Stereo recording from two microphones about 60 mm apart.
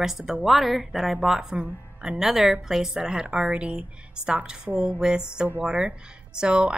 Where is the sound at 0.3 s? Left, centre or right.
Centre.